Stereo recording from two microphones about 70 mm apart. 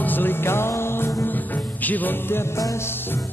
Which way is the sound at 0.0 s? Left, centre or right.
Left.